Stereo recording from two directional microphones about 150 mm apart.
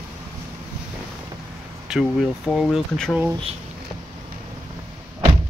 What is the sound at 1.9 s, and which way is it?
Speech, 5° right (ahead or behind).